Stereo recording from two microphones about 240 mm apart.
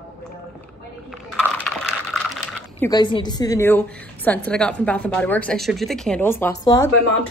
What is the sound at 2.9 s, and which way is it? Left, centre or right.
A woman's voice, centre.